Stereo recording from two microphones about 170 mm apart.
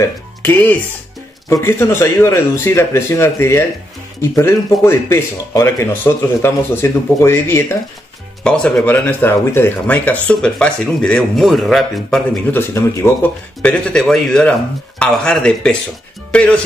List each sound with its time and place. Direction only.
0.4 s speech: 10° left (ahead or behind)
8.5 s speech: 5° left (ahead or behind)
12.5 s speech: 15° left (ahead or behind)